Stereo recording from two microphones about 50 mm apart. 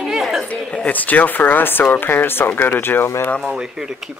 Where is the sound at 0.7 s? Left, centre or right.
Left.